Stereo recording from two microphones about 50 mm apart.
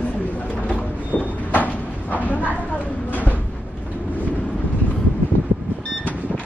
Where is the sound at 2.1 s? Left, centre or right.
Left.